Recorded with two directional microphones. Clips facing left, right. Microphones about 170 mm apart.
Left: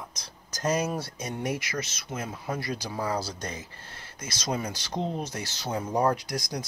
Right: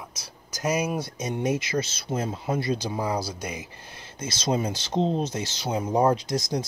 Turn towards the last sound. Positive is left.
turn(degrees=-25)  # may be behind; listen again after turning